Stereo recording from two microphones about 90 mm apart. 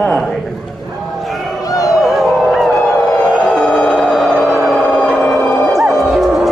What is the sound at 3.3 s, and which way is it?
Music, centre (ahead or behind).